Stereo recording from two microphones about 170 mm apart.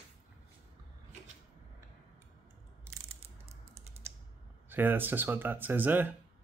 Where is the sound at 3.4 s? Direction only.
35° right (ahead or behind).